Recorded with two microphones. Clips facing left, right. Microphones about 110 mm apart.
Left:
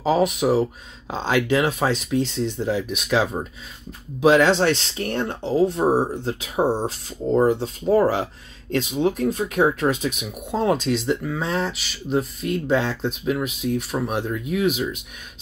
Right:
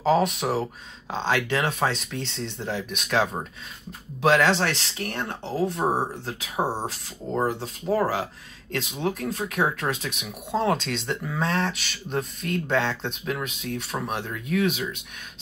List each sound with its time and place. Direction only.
0.0 s speech: 10° left (ahead or behind)
7.4 s speech: 25° left (ahead or behind)